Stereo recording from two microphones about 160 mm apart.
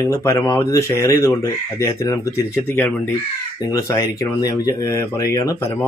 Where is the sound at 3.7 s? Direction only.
20° left (ahead or behind).